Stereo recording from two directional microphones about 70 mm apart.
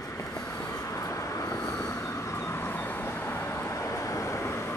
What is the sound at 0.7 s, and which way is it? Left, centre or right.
Vehicle, left.